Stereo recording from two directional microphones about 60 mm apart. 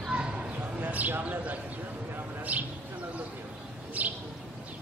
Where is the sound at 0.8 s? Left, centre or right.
Right.